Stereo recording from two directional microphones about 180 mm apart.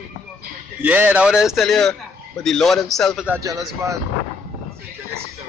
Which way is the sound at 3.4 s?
20° right (ahead or behind).